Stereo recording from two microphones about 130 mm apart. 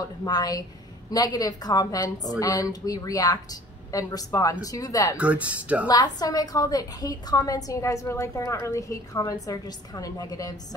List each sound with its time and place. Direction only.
0.2 s a woman's voice: 30° left (ahead or behind)
5.1 s speech: 10° right (ahead or behind)
5.9 s a woman's voice: 30° left (ahead or behind)